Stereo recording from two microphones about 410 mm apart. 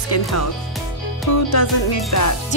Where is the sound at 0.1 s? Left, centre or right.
Left.